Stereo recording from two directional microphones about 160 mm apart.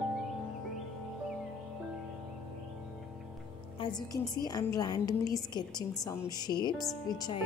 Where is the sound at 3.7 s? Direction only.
30° left (ahead or behind).